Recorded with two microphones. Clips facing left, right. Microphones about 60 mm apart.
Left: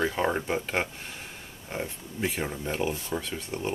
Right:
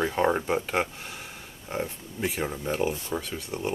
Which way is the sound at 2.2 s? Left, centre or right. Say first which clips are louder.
Right 1 dB; centre.